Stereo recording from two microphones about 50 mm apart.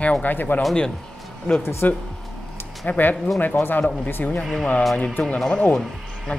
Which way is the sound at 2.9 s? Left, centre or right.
Left.